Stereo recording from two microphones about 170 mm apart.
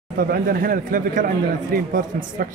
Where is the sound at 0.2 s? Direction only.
60° right (ahead or behind).